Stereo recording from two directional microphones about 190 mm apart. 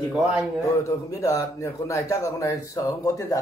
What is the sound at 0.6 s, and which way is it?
A man's voice, 15° left (ahead or behind).